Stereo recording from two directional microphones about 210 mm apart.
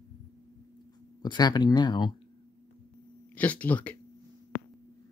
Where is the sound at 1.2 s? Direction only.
20° left (ahead or behind).